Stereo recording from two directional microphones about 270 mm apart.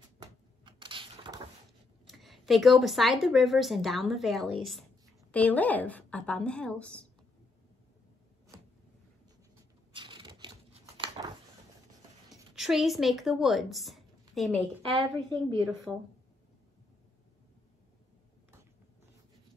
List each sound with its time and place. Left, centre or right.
0.7 s cupboard open or close: centre
2.0 s a woman's voice: centre
9.9 s a sound: centre
12.5 s a woman's voice: centre